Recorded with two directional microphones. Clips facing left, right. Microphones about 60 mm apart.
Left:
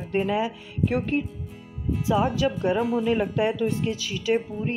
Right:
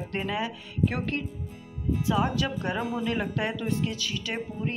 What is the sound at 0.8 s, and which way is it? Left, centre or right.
A woman's voice, centre.